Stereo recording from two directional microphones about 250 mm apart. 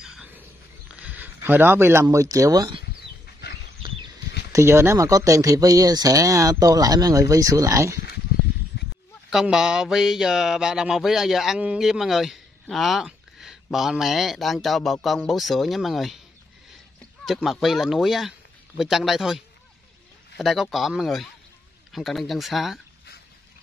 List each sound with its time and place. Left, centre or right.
0.0 s wild animals: centre
0.9 s a sound: centre
2.3 s speech: centre
4.5 s speech: centre
8.7 s honk: left
9.3 s speech: centre
17.2 s speech: centre